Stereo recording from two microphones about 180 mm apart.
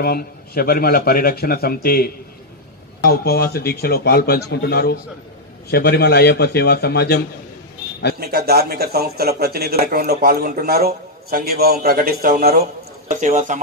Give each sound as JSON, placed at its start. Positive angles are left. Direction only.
{"t": 0.0, "sound": "a man's voice", "side_deg": 55}
{"t": 8.2, "sound": "speech", "side_deg": -60}
{"t": 13.1, "sound": "speech", "side_deg": -45}